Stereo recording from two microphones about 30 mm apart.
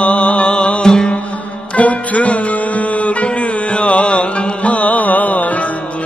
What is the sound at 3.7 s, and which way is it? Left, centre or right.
Music, left.